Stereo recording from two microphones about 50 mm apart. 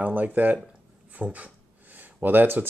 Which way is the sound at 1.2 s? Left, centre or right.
Right.